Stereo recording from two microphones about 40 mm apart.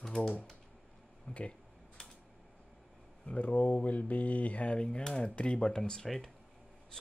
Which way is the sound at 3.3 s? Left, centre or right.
Left.